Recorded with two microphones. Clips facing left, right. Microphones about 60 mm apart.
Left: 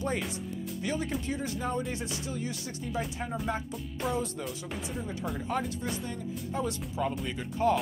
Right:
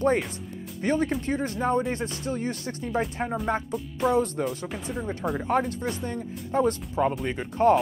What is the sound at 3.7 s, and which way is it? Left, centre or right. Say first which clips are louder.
Speech: right 8 dB; centre.